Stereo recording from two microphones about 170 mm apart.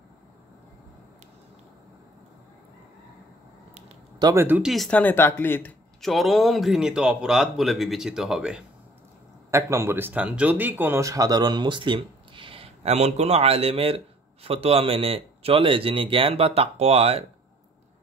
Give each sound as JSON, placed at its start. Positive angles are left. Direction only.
{"t": 4.2, "sound": "speech", "side_deg": -15}
{"t": 9.5, "sound": "speech", "side_deg": -15}